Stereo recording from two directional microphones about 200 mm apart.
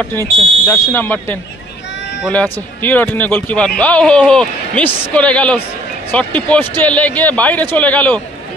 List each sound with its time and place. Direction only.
0.7 s speech: 10° left (ahead or behind)